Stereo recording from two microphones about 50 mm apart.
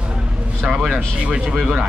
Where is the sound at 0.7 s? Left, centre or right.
Centre.